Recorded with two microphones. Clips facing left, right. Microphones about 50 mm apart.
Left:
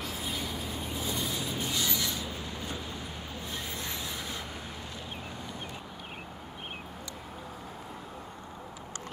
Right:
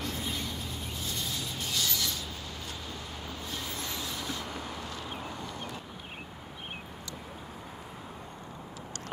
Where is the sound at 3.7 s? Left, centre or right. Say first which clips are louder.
Even; left.